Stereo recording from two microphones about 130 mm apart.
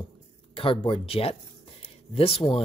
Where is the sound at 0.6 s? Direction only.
45° left (ahead or behind).